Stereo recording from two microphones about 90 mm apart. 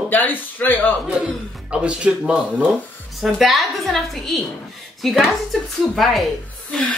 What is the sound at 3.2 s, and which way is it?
A woman's voice, centre (ahead or behind).